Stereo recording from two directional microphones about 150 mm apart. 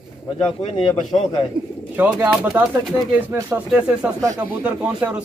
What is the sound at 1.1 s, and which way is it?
Speech, 30° left (ahead or behind).